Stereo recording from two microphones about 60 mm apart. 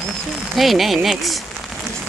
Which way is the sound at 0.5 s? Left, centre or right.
Centre.